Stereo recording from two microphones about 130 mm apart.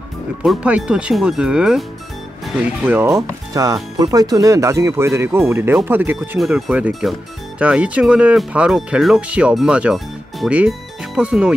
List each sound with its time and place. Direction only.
0.4 s speech: 10° right (ahead or behind)
2.8 s speech: 15° right (ahead or behind)
10.7 s music: 10° right (ahead or behind)